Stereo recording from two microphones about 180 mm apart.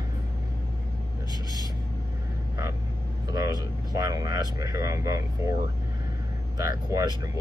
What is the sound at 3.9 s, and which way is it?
Speech, 20° right (ahead or behind).